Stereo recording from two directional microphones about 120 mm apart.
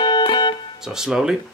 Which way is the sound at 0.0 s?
40° left (ahead or behind).